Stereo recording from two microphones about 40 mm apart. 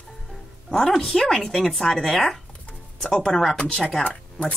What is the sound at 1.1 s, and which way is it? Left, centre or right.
Speech, centre.